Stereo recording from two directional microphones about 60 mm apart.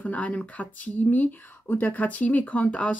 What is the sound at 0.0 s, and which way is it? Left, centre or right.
A woman's voice, left.